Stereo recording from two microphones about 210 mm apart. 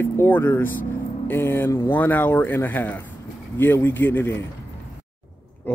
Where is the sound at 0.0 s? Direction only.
10° left (ahead or behind).